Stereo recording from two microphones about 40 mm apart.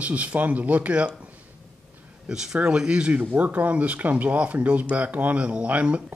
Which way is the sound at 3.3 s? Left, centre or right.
Right.